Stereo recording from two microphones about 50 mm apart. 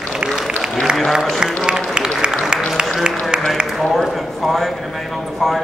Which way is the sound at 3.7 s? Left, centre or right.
Centre.